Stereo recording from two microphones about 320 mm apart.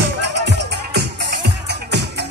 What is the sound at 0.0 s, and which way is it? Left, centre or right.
Music, right.